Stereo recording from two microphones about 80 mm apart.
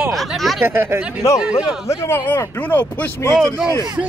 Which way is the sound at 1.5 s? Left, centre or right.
Left.